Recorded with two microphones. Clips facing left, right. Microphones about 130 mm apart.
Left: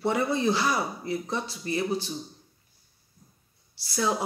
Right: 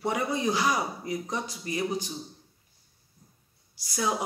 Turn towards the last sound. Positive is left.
turn(degrees=-15)  # may be behind; listen again after turning